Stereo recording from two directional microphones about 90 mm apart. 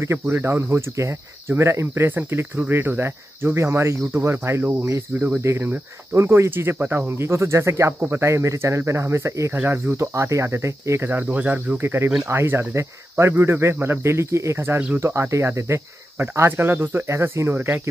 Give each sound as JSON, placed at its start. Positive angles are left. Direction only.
{"t": 0.0, "sound": "speech", "side_deg": -30}